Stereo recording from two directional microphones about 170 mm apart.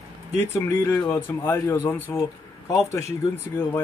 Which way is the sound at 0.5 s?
15° left (ahead or behind).